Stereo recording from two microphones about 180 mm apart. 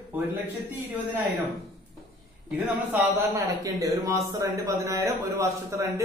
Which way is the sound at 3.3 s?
20° right (ahead or behind).